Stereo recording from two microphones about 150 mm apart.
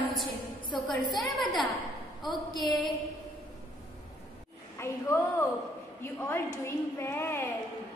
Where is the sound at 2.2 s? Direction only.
30° left (ahead or behind).